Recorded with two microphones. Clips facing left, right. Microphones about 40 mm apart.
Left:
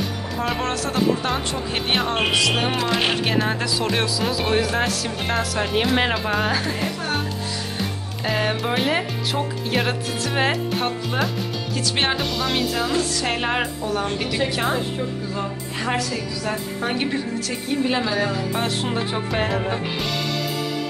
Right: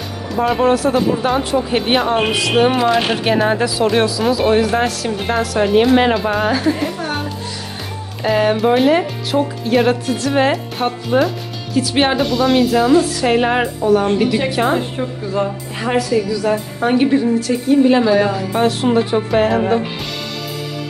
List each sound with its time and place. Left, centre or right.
0.4 s speech: centre
8.2 s speech: centre
15.8 s speech: centre